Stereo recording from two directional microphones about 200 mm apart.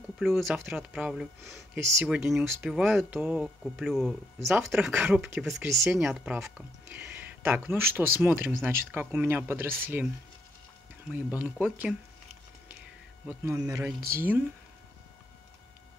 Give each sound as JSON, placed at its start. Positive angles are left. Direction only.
{"t": 0.2, "sound": "speech", "side_deg": 0}
{"t": 1.8, "sound": "speech", "side_deg": -15}
{"t": 2.0, "sound": "speech", "side_deg": -5}
{"t": 11.1, "sound": "speech", "side_deg": -5}
{"t": 13.3, "sound": "speech", "side_deg": -15}